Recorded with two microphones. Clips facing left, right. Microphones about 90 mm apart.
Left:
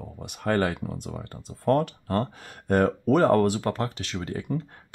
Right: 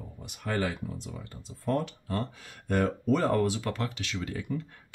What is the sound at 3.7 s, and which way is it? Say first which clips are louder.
Speech: left 5 dB; 40° left (ahead or behind).